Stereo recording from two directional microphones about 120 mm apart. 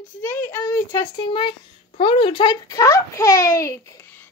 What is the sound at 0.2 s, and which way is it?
A child's voice, 20° left (ahead or behind).